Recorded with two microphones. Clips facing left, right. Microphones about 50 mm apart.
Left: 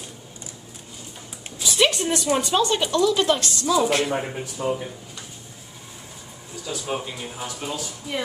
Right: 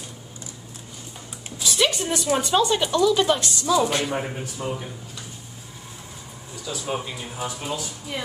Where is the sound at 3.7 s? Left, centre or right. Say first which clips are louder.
Left 1 dB; centre.